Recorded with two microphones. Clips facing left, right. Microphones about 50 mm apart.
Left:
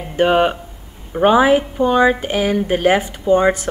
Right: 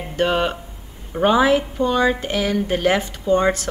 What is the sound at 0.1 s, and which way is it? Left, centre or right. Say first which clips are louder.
Speech: left 5 dB; centre.